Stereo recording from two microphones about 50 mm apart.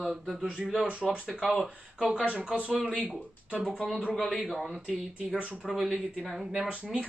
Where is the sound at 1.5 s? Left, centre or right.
Centre.